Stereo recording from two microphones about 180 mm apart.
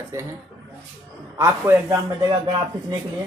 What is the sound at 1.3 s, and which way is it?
A man's voice, 15° right (ahead or behind).